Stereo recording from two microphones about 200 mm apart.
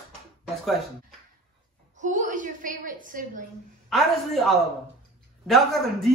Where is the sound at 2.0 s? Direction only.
40° right (ahead or behind).